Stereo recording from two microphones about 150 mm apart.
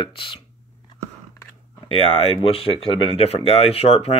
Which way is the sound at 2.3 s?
40° left (ahead or behind).